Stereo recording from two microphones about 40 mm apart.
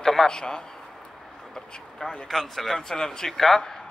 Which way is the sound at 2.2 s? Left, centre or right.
Centre.